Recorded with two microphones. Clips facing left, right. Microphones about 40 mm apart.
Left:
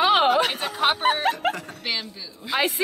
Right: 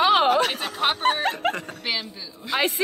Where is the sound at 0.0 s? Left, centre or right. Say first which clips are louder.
Even; centre.